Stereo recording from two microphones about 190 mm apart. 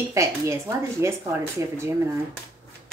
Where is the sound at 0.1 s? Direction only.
15° right (ahead or behind).